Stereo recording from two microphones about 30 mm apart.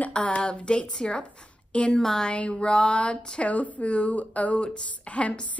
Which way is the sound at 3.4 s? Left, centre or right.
Left.